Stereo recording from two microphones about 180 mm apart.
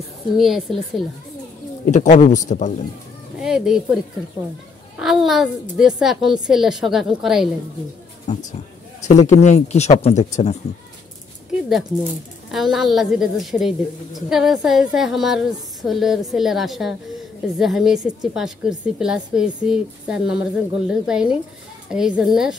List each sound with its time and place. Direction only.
0.4 s a woman's voice: centre (ahead or behind)
1.9 s speech: 40° left (ahead or behind)
3.3 s a woman's voice: 5° right (ahead or behind)
8.3 s speech: 40° left (ahead or behind)
12.4 s a woman's voice: centre (ahead or behind)